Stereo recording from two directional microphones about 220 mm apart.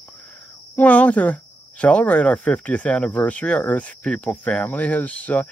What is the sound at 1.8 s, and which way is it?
Speech, 5° left (ahead or behind).